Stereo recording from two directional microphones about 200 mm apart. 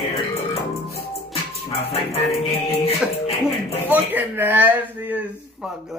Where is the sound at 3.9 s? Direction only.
10° right (ahead or behind).